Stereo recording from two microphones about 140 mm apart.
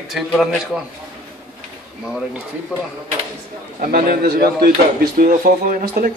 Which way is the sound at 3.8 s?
90° right.